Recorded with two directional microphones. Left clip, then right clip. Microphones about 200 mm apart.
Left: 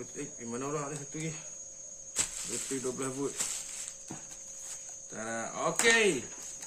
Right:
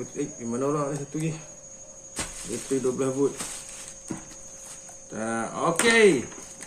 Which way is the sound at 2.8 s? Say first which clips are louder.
Right 10 dB; 15° left (ahead or behind).